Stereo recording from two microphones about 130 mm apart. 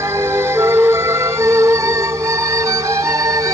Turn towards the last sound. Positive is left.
turn(degrees=-25)  # may be behind; listen again after turning